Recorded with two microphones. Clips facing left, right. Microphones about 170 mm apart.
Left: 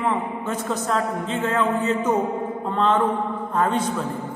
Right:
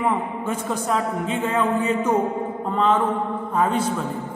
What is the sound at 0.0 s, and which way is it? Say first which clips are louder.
A man's voice: right 1 dB; 10° right (ahead or behind).